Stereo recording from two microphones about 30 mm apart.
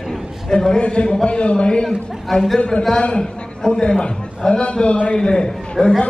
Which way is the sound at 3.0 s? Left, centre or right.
Left.